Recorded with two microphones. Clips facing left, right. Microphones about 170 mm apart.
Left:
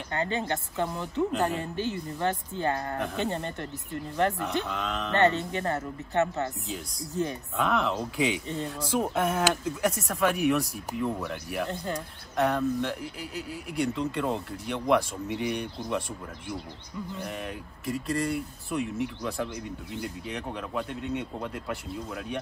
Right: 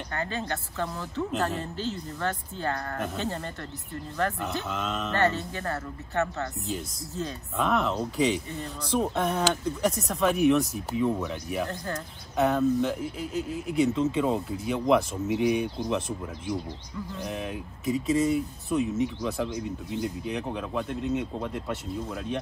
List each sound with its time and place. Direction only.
0.1 s speech: 20° left (ahead or behind)
4.6 s speech: centre (ahead or behind)
5.1 s speech: 20° left (ahead or behind)
7.5 s speech: centre (ahead or behind)
11.7 s speech: 20° left (ahead or behind)
12.4 s speech: centre (ahead or behind)
17.2 s speech: centre (ahead or behind)